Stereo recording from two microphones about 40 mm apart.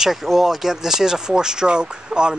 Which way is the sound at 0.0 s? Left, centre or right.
Centre.